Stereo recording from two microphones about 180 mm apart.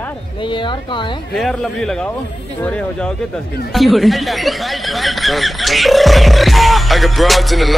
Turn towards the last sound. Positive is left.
turn(degrees=0)  # may be behind; listen again after turning